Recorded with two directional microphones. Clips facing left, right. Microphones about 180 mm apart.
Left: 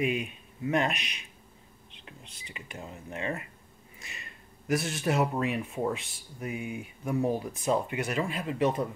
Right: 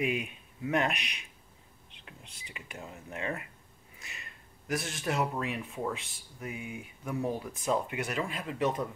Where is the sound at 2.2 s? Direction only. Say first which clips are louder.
Left 2 dB; 10° right (ahead or behind).